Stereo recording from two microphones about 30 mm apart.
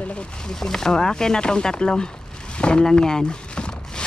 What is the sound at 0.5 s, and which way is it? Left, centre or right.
Speech, centre.